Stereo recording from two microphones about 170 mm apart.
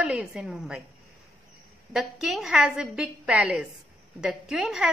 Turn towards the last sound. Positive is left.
turn(degrees=-5)  # may be behind; listen again after turning